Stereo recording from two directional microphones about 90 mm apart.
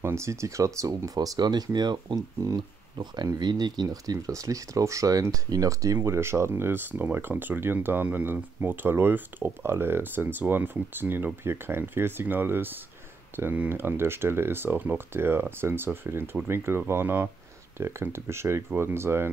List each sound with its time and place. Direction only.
0.0 s speech: 30° right (ahead or behind)